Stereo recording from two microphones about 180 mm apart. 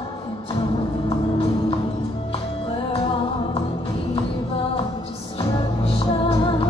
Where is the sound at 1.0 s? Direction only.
35° left (ahead or behind).